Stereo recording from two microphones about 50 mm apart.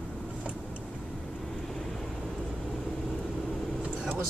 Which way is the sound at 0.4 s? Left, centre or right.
Right.